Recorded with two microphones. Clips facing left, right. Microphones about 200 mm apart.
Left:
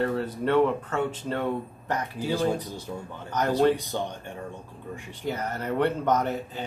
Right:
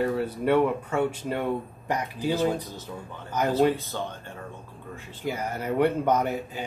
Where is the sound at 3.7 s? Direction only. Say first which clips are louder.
Left 2 dB; 15° left (ahead or behind).